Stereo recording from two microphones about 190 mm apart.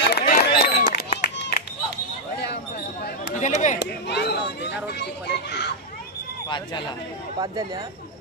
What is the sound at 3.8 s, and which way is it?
A child's voice, 60° left (ahead or behind).